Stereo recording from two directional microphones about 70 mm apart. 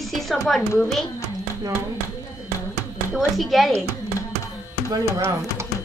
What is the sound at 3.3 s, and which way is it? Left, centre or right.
Speech, centre.